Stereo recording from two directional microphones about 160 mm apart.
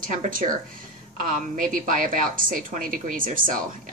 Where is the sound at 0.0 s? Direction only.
55° right (ahead or behind).